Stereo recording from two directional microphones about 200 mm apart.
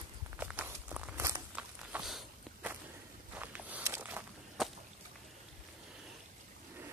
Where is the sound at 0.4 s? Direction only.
5° right (ahead or behind).